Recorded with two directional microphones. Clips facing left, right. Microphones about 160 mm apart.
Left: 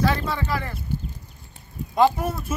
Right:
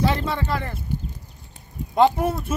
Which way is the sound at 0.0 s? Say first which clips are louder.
Right 1 dB; 25° right (ahead or behind).